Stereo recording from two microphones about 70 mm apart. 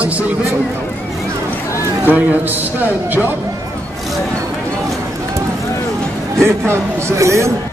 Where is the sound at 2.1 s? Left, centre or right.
Right.